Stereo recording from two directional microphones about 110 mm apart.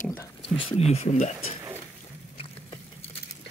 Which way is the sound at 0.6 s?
60° left (ahead or behind).